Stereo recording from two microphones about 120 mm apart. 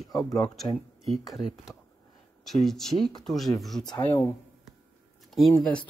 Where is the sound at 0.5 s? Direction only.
Centre (ahead or behind).